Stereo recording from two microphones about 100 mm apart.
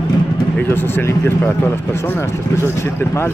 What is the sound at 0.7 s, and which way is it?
Speech, 25° left (ahead or behind).